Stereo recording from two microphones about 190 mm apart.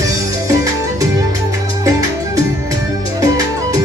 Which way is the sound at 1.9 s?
15° right (ahead or behind).